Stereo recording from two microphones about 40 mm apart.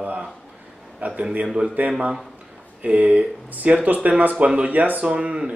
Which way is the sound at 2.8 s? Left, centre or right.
Right.